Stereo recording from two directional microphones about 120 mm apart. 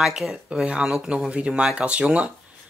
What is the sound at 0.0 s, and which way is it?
Speech, centre (ahead or behind).